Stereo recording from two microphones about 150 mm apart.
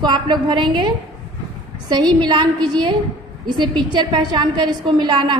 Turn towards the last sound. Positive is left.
turn(degrees=-30)  # may be behind; listen again after turning